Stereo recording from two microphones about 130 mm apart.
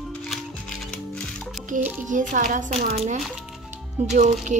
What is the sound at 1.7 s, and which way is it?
Music, 80° right.